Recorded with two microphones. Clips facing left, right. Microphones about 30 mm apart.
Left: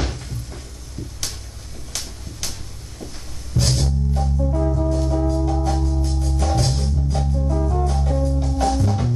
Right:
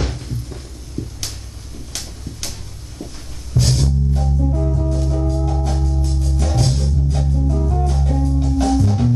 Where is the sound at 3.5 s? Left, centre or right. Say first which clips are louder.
Right 3 dB; centre.